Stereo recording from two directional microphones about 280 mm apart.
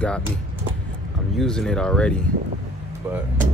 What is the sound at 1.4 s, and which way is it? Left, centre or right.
Speech, centre.